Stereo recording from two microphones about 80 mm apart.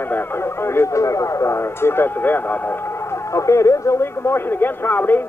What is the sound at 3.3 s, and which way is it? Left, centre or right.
Speech, left.